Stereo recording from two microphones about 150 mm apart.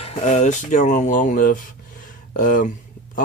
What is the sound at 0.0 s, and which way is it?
Speech, 50° left (ahead or behind).